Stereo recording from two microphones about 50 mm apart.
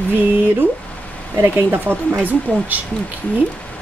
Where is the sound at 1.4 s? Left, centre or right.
Right.